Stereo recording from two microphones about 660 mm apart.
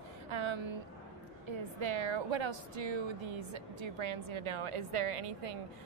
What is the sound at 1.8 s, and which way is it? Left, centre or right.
A woman's voice, right.